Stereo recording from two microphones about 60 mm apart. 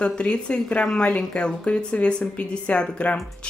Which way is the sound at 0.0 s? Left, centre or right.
Centre.